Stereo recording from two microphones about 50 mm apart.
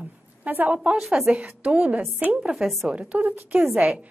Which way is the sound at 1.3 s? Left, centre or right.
Right.